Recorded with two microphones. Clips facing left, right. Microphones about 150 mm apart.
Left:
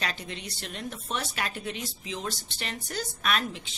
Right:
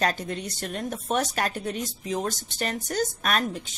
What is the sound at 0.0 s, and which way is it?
Speech, 45° right (ahead or behind).